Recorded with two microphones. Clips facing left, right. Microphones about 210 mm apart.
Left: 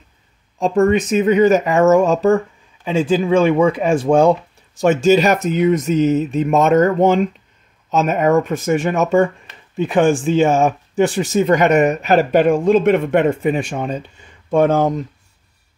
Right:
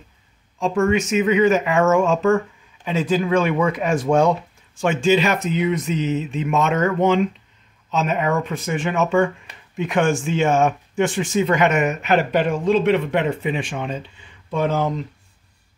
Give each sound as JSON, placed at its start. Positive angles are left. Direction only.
{"t": 0.6, "sound": "speech", "side_deg": 40}
{"t": 4.7, "sound": "speech", "side_deg": 40}